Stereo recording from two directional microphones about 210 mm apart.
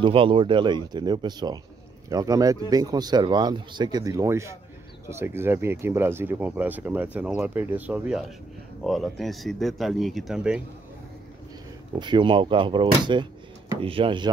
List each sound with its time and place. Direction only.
0.0 s speech: 25° right (ahead or behind); by 10.6 s 5° right (ahead or behind)
12.0 s speech: 20° right (ahead or behind)